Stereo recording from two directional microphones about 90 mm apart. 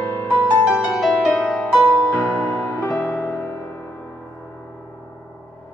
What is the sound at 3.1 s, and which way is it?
Music, centre (ahead or behind).